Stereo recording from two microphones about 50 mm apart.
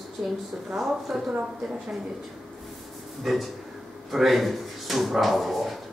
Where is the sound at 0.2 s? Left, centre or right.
Centre.